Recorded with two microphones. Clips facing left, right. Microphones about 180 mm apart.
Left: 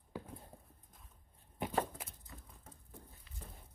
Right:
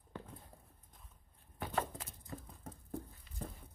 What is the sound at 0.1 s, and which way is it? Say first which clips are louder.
Clip-clop: left 2 dB; 10° left (ahead or behind).